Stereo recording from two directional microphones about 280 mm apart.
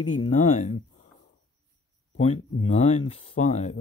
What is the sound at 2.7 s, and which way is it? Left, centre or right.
Speech, left.